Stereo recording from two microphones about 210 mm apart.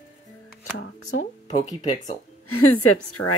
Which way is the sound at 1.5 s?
20° left (ahead or behind).